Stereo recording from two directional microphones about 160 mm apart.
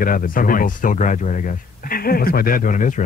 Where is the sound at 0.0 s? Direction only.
60° left (ahead or behind).